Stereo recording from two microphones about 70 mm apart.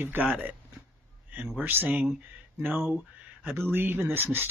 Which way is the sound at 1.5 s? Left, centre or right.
Right.